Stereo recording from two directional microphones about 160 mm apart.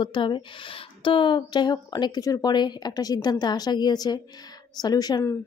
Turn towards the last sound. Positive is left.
turn(degrees=25)  # may be behind; listen again after turning